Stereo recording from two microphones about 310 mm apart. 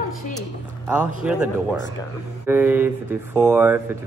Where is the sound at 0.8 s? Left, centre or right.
Centre.